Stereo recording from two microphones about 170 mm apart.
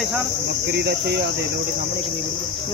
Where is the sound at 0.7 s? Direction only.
75° right (ahead or behind).